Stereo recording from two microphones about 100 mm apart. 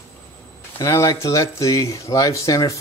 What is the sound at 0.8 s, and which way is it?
Speech, 30° left (ahead or behind).